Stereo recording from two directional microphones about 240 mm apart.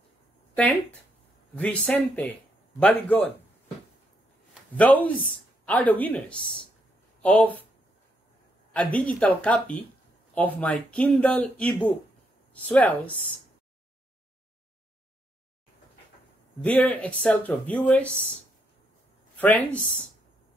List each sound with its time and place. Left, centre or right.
1.5 s speech: centre
4.7 s speech: centre
8.7 s speech: centre
16.6 s speech: centre
19.3 s speech: centre